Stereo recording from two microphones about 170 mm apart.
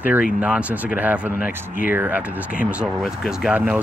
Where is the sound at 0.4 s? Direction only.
5° right (ahead or behind).